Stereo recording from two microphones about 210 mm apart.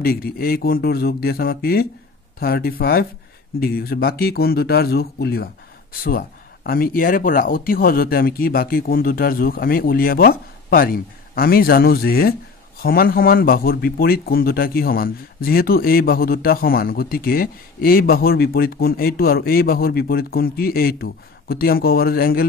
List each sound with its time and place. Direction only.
0.0 s speech: 45° left (ahead or behind)